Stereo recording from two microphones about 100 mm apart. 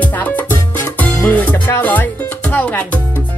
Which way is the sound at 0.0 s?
20° left (ahead or behind).